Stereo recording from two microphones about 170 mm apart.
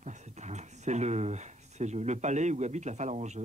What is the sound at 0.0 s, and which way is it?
Speech, 45° right (ahead or behind).